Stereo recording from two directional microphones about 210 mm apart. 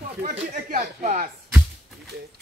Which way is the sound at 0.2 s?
35° right (ahead or behind).